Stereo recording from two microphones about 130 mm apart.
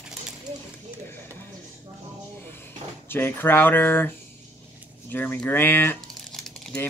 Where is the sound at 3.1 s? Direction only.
15° left (ahead or behind).